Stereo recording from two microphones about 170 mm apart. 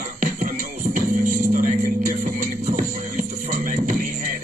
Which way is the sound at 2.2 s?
55° right (ahead or behind).